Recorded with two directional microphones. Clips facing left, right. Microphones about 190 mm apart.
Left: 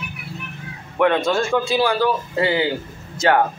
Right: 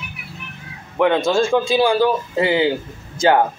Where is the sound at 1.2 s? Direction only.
25° right (ahead or behind).